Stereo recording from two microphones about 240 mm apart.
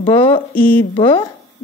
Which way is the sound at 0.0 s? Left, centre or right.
Centre.